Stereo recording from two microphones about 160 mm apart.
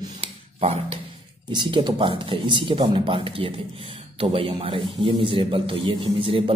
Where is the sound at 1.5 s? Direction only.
30° right (ahead or behind).